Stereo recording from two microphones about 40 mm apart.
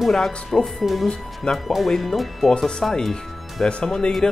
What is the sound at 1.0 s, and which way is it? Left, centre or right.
Speech, centre.